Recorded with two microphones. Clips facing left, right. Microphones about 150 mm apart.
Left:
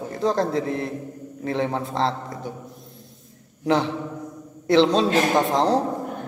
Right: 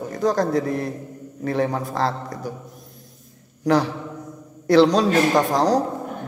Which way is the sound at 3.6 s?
25° left (ahead or behind).